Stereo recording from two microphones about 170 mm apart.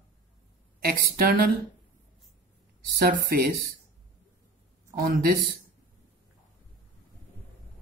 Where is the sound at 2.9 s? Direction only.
65° right (ahead or behind).